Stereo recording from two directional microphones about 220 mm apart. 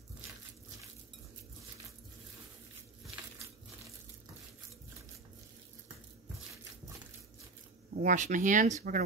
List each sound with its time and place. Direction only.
8.0 s speech: 35° right (ahead or behind)